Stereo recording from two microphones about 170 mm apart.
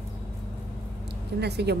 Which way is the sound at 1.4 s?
75° right (ahead or behind).